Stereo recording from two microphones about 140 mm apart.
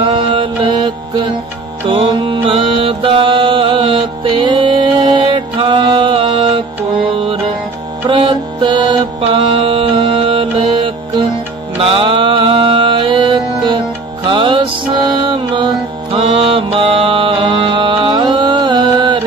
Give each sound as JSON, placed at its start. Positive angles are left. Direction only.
{"t": 0.0, "sound": "mantra", "side_deg": -35}
{"t": 1.9, "sound": "mantra", "side_deg": -40}
{"t": 8.1, "sound": "music", "side_deg": -35}